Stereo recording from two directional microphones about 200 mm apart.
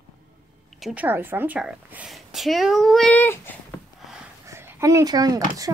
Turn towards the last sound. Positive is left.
turn(degrees=-20)  # may be behind; listen again after turning